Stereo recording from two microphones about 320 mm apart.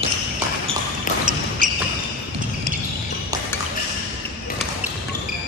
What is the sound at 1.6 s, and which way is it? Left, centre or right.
Basketball bounce, right.